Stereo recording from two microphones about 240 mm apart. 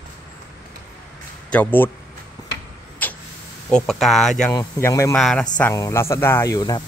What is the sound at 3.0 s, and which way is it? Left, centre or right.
Vehicle, centre.